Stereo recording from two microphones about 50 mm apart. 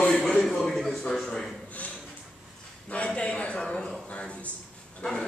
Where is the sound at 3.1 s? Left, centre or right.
Left.